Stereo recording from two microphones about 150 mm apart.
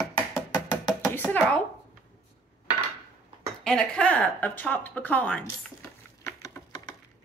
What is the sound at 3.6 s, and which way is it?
A woman's voice, 5° left (ahead or behind).